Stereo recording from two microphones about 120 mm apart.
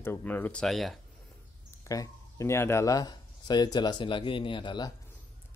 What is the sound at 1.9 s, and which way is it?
Speech, 25° left (ahead or behind).